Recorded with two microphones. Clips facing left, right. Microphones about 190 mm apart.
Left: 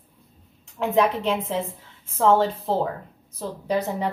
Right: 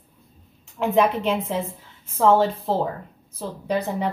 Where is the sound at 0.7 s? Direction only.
Centre (ahead or behind).